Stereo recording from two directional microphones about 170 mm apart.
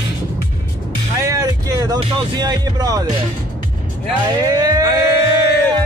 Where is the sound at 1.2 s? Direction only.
20° right (ahead or behind).